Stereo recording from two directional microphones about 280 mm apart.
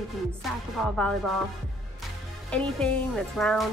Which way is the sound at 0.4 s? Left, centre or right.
Centre.